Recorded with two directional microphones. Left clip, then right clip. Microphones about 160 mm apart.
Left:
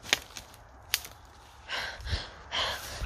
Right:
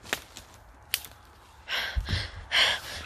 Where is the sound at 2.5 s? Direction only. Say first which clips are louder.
Right 8 dB; 15° right (ahead or behind).